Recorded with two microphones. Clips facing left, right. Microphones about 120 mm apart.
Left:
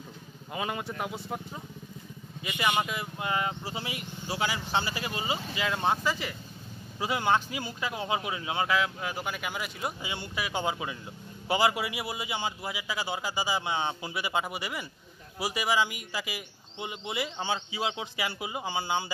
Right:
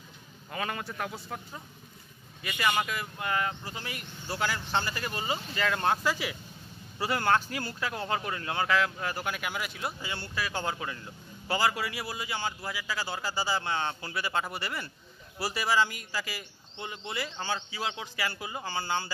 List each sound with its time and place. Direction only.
0.5 s speech: 15° left (ahead or behind); by 9.8 s centre (ahead or behind)
9.8 s speech: 15° left (ahead or behind)